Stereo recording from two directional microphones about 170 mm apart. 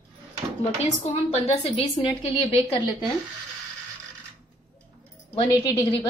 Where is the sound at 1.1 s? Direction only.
35° left (ahead or behind).